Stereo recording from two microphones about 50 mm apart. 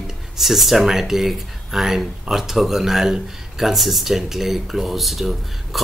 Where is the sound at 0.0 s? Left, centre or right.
Centre.